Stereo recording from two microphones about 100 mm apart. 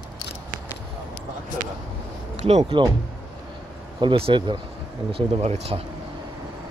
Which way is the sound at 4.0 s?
60° right (ahead or behind).